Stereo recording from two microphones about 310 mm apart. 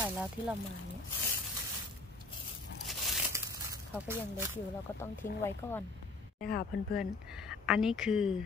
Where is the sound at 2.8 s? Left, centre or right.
Centre.